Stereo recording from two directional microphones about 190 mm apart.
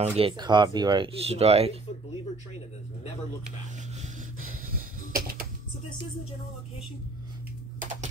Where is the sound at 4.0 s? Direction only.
45° right (ahead or behind).